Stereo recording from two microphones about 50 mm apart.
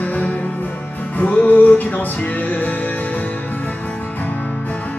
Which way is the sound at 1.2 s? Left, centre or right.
Left.